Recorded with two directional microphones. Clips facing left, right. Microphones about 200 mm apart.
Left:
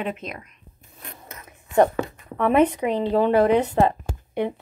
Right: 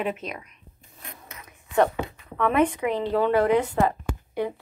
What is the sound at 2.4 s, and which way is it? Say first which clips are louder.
A woman's voice: left 3 dB; 20° left (ahead or behind).